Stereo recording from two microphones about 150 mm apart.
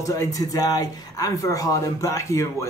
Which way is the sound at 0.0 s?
20° left (ahead or behind).